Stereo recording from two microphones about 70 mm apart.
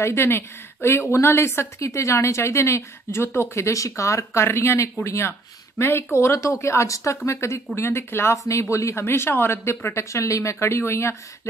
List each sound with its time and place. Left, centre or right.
0.0 s a woman's voice: left